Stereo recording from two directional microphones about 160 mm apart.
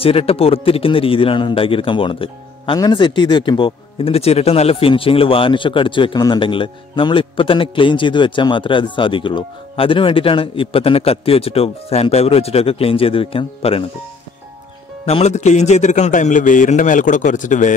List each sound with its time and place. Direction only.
0.0 s speech: 35° left (ahead or behind)
15.0 s a man's voice: 40° left (ahead or behind)